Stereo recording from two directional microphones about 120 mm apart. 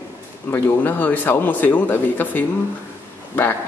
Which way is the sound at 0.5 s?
20° left (ahead or behind).